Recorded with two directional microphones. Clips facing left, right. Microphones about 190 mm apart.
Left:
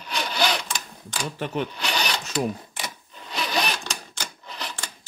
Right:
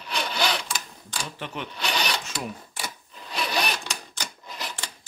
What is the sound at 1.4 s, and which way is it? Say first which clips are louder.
Speech: left 9 dB; 40° left (ahead or behind).